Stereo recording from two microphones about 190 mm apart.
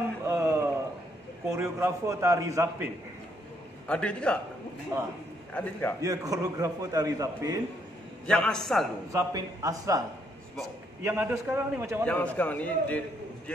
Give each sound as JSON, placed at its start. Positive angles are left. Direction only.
{"t": 0.2, "sound": "a sound", "side_deg": -15}
{"t": 1.5, "sound": "a man's voice", "side_deg": -15}
{"t": 3.8, "sound": "a man's voice", "side_deg": 5}
{"t": 4.9, "sound": "a man's voice", "side_deg": -20}
{"t": 5.5, "sound": "a man's voice", "side_deg": 10}
{"t": 5.9, "sound": "a man's voice", "side_deg": -20}
{"t": 8.3, "sound": "a man's voice", "side_deg": 5}
{"t": 9.1, "sound": "a man's voice", "side_deg": -15}
{"t": 11.1, "sound": "a man's voice", "side_deg": -10}
{"t": 12.0, "sound": "a man's voice", "side_deg": 5}